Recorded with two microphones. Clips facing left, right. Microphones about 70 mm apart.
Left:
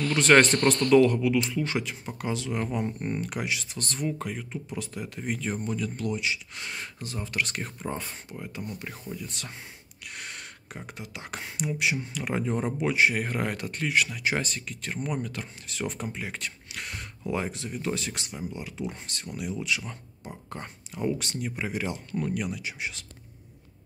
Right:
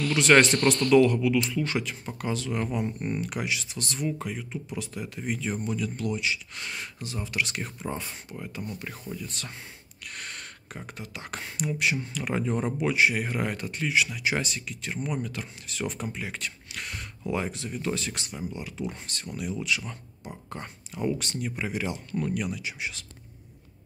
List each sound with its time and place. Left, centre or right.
0.0 s speech: left
2.7 s speech: left
4.6 s speech: left
5.2 s speech: left
8.4 s speech: left
13.1 s speech: left
14.1 s speech: left